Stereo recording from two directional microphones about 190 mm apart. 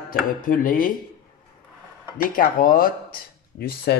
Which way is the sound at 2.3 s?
45° left (ahead or behind).